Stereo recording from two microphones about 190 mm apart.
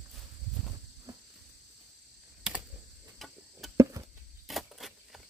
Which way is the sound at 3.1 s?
Centre (ahead or behind).